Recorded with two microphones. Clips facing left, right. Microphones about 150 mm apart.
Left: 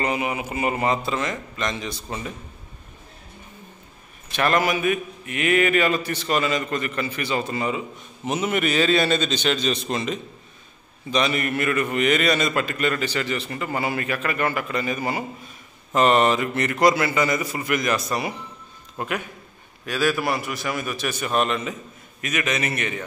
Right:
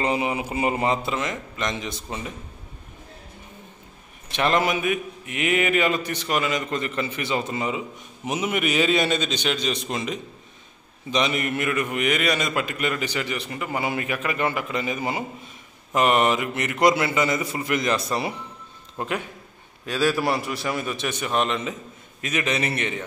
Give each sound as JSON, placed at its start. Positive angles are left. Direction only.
{"t": 0.0, "sound": "a man's voice", "side_deg": -25}
{"t": 4.3, "sound": "a man's voice", "side_deg": -20}